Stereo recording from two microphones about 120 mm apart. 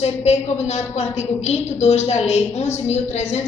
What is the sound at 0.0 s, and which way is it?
A woman's voice, 65° left (ahead or behind).